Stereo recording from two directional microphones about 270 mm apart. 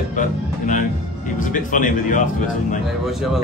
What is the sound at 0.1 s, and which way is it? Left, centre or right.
Speech, left.